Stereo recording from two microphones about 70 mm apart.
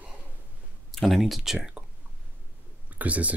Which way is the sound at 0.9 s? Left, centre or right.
Centre.